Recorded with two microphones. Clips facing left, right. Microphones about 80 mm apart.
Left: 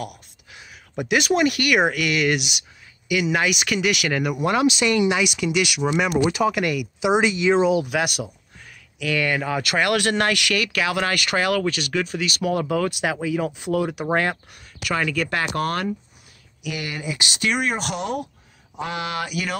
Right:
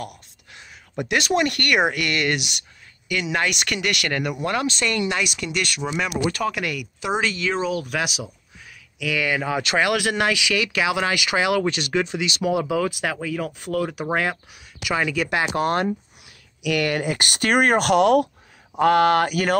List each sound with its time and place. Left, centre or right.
0.0 s speech: centre
6.5 s speech: centre
7.0 s speech: centre
7.9 s speech: centre
9.0 s speech: centre
12.6 s speech: centre
13.0 s speech: centre; by 15.9 s right
16.6 s speech: right